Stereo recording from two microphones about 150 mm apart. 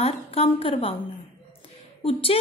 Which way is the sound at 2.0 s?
40° left (ahead or behind).